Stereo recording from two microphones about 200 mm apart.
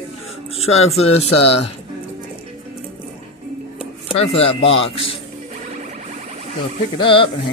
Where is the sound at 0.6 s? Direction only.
90° left.